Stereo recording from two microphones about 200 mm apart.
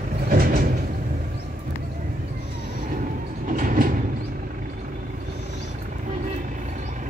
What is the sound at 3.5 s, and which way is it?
Train, 40° right (ahead or behind).